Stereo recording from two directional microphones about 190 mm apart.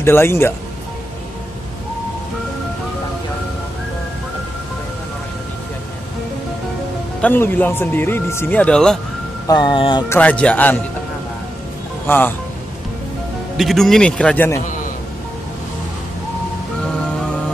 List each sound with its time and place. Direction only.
0.0 s speech: 15° left (ahead or behind)
7.2 s speech: 10° left (ahead or behind)
9.5 s speech: 25° left (ahead or behind)
10.0 s speech: 10° left (ahead or behind)
12.1 s speech: 10° left (ahead or behind)
13.6 s speech: centre (ahead or behind)